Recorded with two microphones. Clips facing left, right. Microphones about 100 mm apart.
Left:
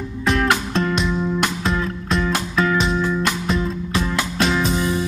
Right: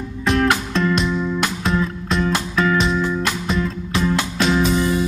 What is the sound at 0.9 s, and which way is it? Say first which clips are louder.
Music: right 1 dB; centre (ahead or behind).